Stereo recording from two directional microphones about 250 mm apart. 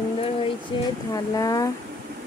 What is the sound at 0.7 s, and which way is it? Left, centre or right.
Speech, centre.